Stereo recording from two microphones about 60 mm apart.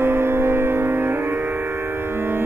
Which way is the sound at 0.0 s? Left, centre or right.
Right.